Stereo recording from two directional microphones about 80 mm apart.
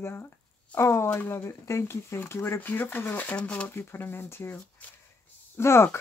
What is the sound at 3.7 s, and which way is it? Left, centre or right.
Speech, left.